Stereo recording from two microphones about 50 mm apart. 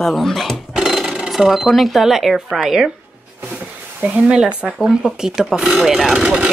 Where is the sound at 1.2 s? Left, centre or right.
Centre.